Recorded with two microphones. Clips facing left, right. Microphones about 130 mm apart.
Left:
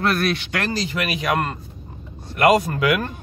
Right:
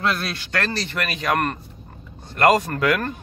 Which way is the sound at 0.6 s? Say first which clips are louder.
Left 1 dB; 15° left (ahead or behind).